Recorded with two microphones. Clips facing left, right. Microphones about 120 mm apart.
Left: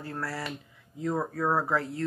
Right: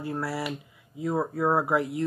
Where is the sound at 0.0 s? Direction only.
15° right (ahead or behind).